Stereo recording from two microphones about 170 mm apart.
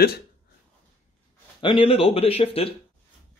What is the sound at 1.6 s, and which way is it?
Speech, 30° left (ahead or behind).